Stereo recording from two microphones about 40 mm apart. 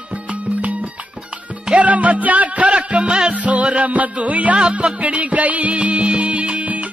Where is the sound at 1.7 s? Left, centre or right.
Right.